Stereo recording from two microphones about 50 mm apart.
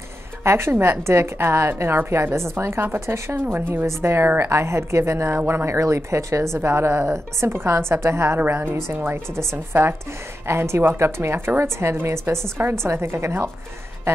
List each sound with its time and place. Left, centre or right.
0.4 s a woman's voice: right
3.3 s a woman's voice: right
3.8 s speech: right
8.5 s a woman's voice: right